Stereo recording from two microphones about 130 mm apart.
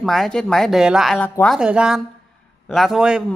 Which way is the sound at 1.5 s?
5° right (ahead or behind).